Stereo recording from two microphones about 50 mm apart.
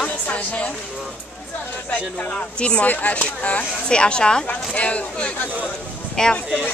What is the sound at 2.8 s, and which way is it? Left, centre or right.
A woman's voice, left.